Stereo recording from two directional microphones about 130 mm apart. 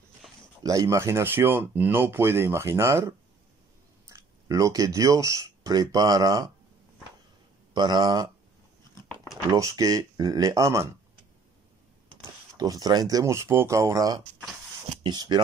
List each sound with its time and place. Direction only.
0.7 s speech: 25° right (ahead or behind)
7.7 s speech: 35° right (ahead or behind)
9.5 s speech: 25° right (ahead or behind)
12.5 s speech: 30° right (ahead or behind)